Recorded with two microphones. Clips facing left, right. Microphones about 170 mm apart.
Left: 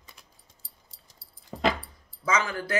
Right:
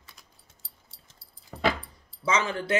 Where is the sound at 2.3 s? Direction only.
25° right (ahead or behind).